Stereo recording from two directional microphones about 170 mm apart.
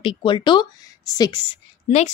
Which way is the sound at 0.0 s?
30° left (ahead or behind).